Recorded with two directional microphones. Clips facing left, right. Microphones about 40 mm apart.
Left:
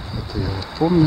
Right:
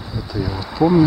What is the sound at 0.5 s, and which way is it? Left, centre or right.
Speech, centre.